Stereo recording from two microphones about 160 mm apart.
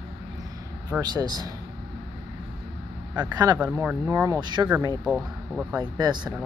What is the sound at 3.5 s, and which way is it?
Speech, 10° right (ahead or behind).